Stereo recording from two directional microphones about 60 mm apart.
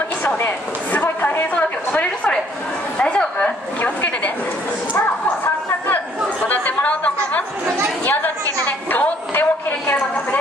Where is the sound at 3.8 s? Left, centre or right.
Left.